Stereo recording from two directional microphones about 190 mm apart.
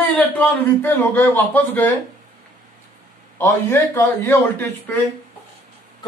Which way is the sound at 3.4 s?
10° left (ahead or behind).